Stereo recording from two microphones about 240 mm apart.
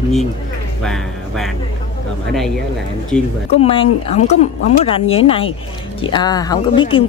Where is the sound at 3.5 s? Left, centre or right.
Left.